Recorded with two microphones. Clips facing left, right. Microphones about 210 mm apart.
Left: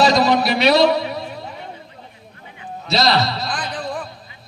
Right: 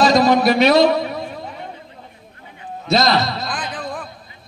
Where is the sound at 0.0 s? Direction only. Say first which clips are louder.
Right 2 dB; 50° right (ahead or behind).